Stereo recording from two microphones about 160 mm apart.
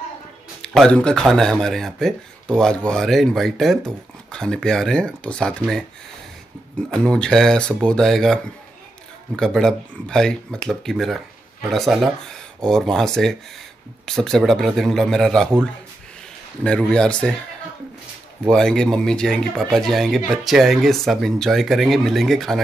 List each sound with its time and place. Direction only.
0.6 s speech: 5° left (ahead or behind)
6.9 s speech: 5° left (ahead or behind)
9.4 s speech: 5° left (ahead or behind)
16.6 s speech: 5° left (ahead or behind)
18.5 s speech: 5° left (ahead or behind)